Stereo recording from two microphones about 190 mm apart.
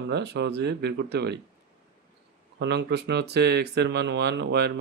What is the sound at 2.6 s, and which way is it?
Speech, 65° right (ahead or behind).